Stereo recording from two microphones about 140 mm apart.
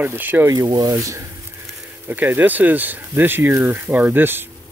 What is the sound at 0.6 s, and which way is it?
Speech, 25° right (ahead or behind).